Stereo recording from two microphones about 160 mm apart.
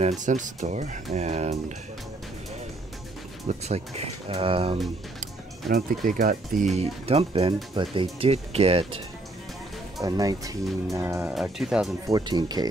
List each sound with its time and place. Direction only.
0.0 s speech: 50° right (ahead or behind)
3.4 s speech: 40° right (ahead or behind)
5.7 s speech: 70° right (ahead or behind)
6.1 s speech: 55° right (ahead or behind)
6.8 s speech: 40° right (ahead or behind)
10.0 s speech: 20° right (ahead or behind)
11.2 s speech: 5° right (ahead or behind)
12.1 s speech: 25° right (ahead or behind)